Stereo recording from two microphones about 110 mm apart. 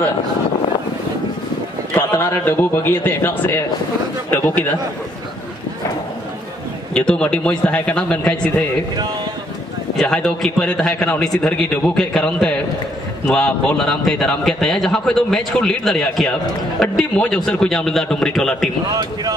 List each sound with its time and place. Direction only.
2.0 s a man's voice: 20° left (ahead or behind)
6.9 s a man's voice: 10° left (ahead or behind)
9.9 s a man's voice: 5° left (ahead or behind)